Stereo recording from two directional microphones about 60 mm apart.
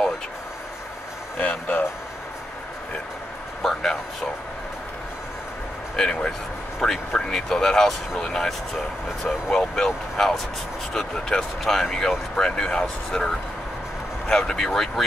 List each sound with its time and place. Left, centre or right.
1.4 s speech: left
3.6 s a sound: centre
5.9 s speech: centre